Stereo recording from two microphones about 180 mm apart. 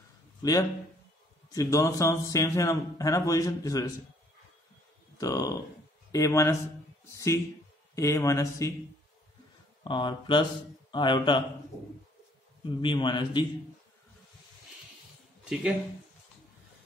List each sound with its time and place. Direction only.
0.4 s speech: 20° left (ahead or behind)
5.1 s a man's voice: 20° left (ahead or behind)
9.8 s speech: 25° left (ahead or behind)
12.6 s speech: 25° left (ahead or behind)